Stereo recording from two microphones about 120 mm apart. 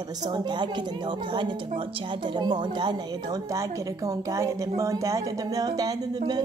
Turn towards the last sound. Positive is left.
turn(degrees=-35)  # may be behind; listen again after turning